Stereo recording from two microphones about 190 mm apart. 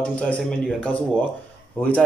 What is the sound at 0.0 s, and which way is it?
Speech, 5° left (ahead or behind).